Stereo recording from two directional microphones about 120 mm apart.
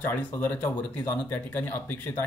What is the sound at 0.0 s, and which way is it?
Speech, 15° left (ahead or behind).